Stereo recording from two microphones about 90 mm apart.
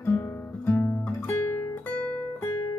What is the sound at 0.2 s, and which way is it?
Guitar, 25° left (ahead or behind).